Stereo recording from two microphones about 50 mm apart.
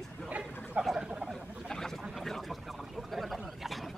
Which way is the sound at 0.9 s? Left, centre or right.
Centre.